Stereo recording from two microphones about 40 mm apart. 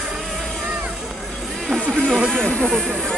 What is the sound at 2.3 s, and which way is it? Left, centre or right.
Snake, centre.